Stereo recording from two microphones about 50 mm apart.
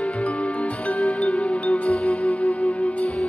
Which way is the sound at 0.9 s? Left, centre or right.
Centre.